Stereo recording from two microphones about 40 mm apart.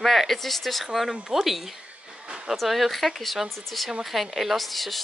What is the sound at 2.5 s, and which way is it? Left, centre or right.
A woman's voice, centre.